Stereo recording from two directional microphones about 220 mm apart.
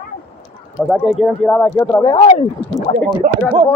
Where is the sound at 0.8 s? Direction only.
Centre (ahead or behind).